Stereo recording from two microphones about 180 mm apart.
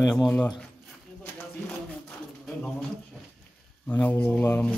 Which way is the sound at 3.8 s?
10° left (ahead or behind).